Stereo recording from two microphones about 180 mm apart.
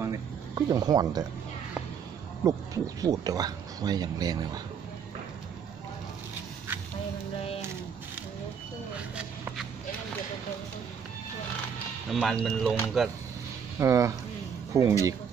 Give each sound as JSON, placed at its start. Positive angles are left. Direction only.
{"t": 0.0, "sound": "speech", "side_deg": -20}
{"t": 2.4, "sound": "speech", "side_deg": -20}
{"t": 8.9, "sound": "a sound", "side_deg": -5}
{"t": 12.1, "sound": "speech", "side_deg": 0}
{"t": 13.7, "sound": "speech", "side_deg": -15}